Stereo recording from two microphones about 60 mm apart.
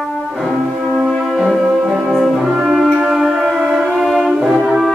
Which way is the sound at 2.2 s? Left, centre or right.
Centre.